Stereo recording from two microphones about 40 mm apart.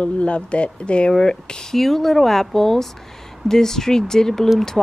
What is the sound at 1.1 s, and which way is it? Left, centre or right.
Speech, centre.